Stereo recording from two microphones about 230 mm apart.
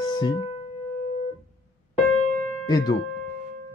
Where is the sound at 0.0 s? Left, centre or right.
Centre.